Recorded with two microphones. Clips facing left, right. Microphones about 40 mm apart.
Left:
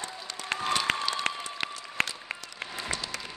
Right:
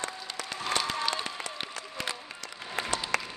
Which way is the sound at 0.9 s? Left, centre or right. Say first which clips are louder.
Left 3 dB; left.